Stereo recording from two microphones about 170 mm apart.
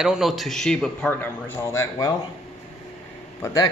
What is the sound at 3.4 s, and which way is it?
Speech, 20° left (ahead or behind).